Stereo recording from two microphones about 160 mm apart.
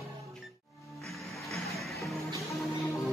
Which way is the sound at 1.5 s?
Centre (ahead or behind).